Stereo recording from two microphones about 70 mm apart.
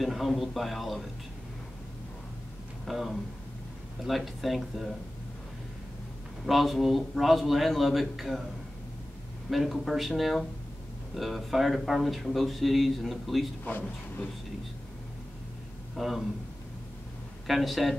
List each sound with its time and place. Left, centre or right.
0.0 s speech: centre
2.9 s speech: centre
6.4 s speech: centre
9.5 s speech: centre
13.7 s speech: left
16.0 s speech: centre
17.5 s speech: centre